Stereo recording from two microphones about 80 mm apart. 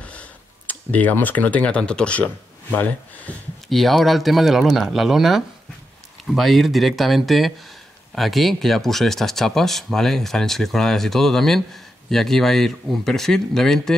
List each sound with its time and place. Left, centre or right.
0.0 s speech: centre
3.6 s speech: centre